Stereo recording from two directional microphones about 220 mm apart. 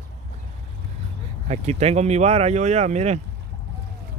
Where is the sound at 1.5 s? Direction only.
30° right (ahead or behind).